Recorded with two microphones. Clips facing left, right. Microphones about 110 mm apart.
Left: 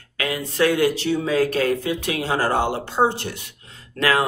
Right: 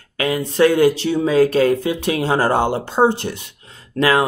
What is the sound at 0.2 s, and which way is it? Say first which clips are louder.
Speech: right 6 dB; 30° right (ahead or behind).